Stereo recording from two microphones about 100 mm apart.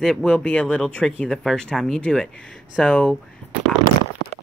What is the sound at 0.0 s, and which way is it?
Speech, 5° left (ahead or behind).